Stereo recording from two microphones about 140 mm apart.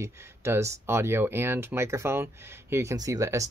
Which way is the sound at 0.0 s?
20° right (ahead or behind).